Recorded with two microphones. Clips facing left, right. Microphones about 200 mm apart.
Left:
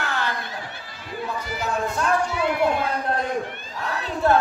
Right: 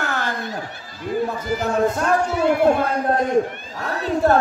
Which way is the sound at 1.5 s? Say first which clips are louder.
Right 7 dB; 45° right (ahead or behind).